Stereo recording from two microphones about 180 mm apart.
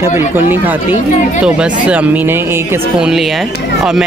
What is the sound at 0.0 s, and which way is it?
Speech, 10° right (ahead or behind).